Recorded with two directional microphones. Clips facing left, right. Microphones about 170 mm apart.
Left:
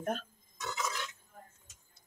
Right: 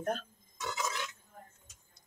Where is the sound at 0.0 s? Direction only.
Centre (ahead or behind).